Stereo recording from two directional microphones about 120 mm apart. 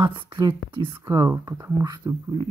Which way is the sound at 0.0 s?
40° right (ahead or behind).